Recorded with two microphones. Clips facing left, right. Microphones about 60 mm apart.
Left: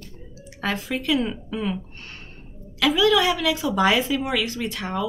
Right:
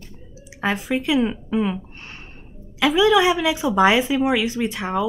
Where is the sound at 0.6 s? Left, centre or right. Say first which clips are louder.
Right 4 dB; centre.